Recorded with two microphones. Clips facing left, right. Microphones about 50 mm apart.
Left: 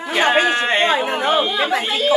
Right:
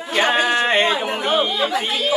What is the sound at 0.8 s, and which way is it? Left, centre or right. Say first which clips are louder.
Speech: left 3 dB; left.